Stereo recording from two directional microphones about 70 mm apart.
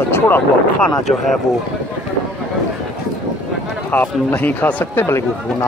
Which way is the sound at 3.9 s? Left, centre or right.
Left.